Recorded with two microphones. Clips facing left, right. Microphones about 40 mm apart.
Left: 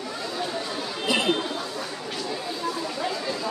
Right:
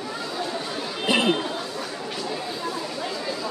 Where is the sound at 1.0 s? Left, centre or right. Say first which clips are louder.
Right 2 dB; right.